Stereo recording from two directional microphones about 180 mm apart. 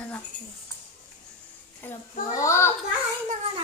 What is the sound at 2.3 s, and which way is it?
Speech, 15° left (ahead or behind).